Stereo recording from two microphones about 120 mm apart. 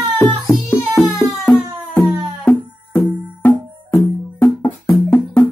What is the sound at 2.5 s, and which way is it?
Music, 15° left (ahead or behind).